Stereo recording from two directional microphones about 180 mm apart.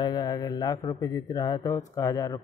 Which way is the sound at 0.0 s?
20° left (ahead or behind).